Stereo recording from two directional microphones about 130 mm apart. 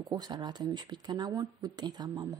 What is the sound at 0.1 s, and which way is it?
Speech, 35° right (ahead or behind).